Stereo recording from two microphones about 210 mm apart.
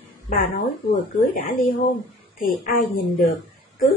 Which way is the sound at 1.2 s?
45° left (ahead or behind).